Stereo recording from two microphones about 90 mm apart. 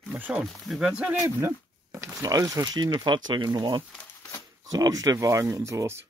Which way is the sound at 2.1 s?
40° right (ahead or behind).